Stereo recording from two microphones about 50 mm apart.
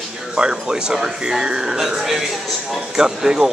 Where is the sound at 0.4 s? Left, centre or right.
Centre.